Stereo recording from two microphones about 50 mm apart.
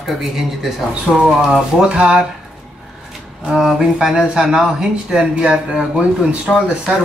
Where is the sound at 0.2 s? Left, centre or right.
Centre.